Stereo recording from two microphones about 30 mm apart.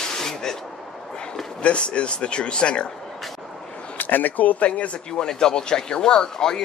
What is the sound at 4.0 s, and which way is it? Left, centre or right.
Speech, left.